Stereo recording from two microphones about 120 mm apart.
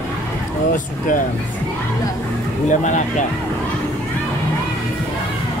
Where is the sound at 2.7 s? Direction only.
90° left.